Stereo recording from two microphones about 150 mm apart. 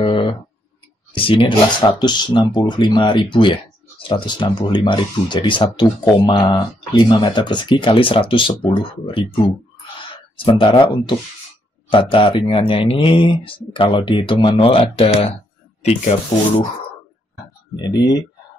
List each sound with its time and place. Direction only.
0.0 s clicking: 35° left (ahead or behind)
1.1 s speech: 35° left (ahead or behind)
17.7 s speech: 30° left (ahead or behind)